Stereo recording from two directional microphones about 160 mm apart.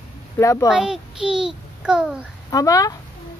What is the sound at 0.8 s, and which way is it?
A child's voice, 5° right (ahead or behind).